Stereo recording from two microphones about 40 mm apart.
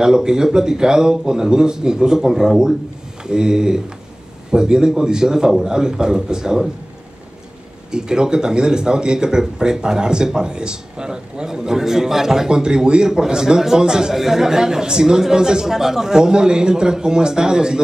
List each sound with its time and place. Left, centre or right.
0.0 s speech: centre
7.9 s speech: centre